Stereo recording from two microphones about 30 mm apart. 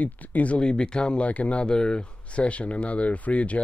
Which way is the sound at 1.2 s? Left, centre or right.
Left.